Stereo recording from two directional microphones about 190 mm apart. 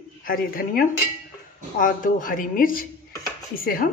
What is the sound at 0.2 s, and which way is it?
A woman's voice, 50° left (ahead or behind).